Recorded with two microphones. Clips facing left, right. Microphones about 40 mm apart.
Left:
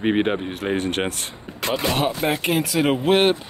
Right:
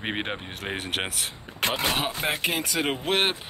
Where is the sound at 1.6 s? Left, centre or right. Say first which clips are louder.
Left 3 dB; right.